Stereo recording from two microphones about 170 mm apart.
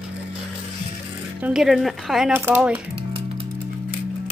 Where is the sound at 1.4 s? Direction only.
5° right (ahead or behind).